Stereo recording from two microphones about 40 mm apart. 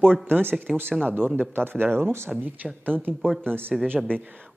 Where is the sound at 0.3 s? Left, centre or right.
Right.